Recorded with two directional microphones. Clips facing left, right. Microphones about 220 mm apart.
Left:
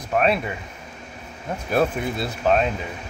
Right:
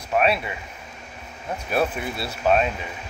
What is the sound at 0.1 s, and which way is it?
Speech, 45° left (ahead or behind).